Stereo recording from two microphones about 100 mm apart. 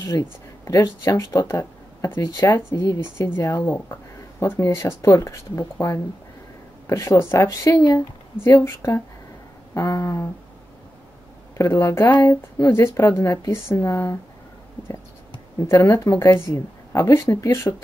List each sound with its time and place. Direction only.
0.0 s speech: 30° left (ahead or behind)
1.5 s a sound: 25° left (ahead or behind)
2.1 s speech: 30° left (ahead or behind)
7.4 s speech: 40° left (ahead or behind)
8.5 s speech: 25° left (ahead or behind)
11.5 s speech: 30° left (ahead or behind)
15.6 s speech: 30° left (ahead or behind)